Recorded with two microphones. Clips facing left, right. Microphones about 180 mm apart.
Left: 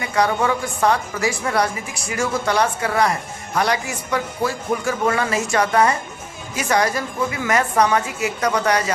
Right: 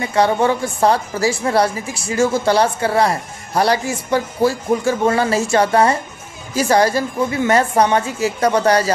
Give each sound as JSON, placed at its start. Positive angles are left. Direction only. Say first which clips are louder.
{"t": 0.0, "sound": "a woman's voice", "louder": "right 4 dB", "side_deg": -30}